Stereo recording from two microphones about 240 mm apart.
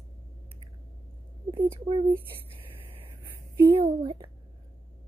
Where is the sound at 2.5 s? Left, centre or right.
Right.